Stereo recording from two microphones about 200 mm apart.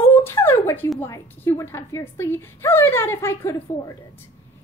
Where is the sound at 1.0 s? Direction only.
15° left (ahead or behind).